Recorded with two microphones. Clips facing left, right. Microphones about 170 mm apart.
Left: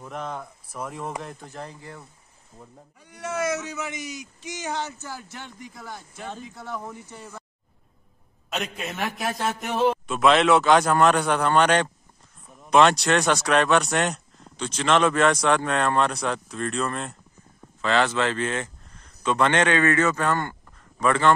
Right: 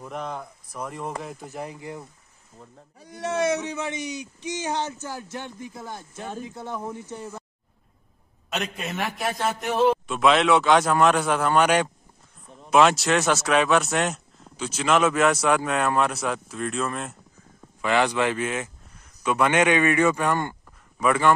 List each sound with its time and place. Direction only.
0.0 s speech: centre (ahead or behind); by 2.0 s 15° right (ahead or behind)
3.0 s speech: 35° right (ahead or behind)
4.7 s a man's voice: 15° right (ahead or behind)
8.5 s speech: centre (ahead or behind)
17.8 s a man's voice: 15° right (ahead or behind)